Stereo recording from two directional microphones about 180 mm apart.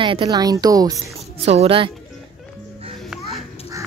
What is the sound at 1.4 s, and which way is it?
Speech, 35° right (ahead or behind).